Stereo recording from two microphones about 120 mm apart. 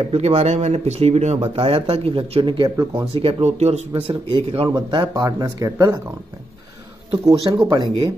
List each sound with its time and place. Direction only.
0.0 s speech: 60° right (ahead or behind)
1.5 s speech: 50° right (ahead or behind)
3.2 s speech: 55° right (ahead or behind)
4.1 s speech: 45° right (ahead or behind)
4.6 s speech: 35° right (ahead or behind)
7.2 s speech: 35° right (ahead or behind)